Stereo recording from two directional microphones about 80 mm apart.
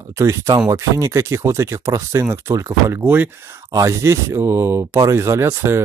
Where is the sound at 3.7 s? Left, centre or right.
Right.